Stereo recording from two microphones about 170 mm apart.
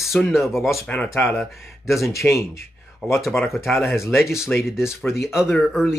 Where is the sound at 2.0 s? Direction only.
15° left (ahead or behind).